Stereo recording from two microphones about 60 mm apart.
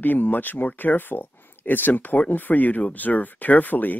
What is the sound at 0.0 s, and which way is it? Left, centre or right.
Speech, left.